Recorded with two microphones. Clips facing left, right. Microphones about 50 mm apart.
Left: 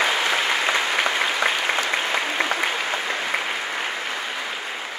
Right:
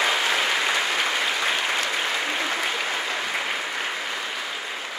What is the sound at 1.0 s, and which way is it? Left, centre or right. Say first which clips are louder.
Applause: left 3 dB; left.